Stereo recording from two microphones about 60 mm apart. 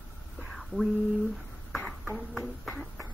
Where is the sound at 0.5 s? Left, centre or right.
Centre.